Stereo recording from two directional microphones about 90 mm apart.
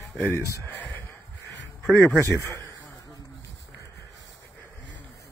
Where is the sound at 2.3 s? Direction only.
35° left (ahead or behind).